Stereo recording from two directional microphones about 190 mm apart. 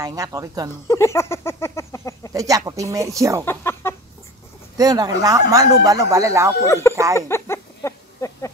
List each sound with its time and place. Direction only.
0.0 s speech: 20° right (ahead or behind)
0.8 s a sound: 15° left (ahead or behind)
2.3 s speech: 15° right (ahead or behind)
3.4 s speech: 15° left (ahead or behind)
4.7 s speech: 20° right (ahead or behind)
6.6 s speech: 15° left (ahead or behind)
7.2 s a sound: 15° left (ahead or behind)